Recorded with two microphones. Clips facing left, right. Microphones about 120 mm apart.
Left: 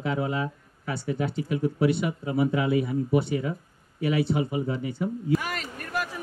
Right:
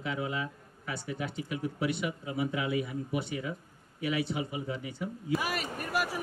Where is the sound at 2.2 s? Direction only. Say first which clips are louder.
Left 9 dB; 45° left (ahead or behind).